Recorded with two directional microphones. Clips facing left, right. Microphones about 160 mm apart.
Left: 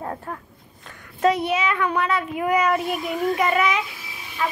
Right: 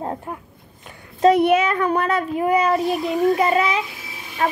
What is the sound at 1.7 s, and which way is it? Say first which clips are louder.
Speech: right 3 dB; 40° right (ahead or behind).